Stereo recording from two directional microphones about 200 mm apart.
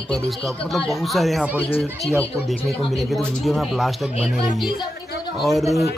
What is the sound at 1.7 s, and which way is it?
Speech, 10° left (ahead or behind).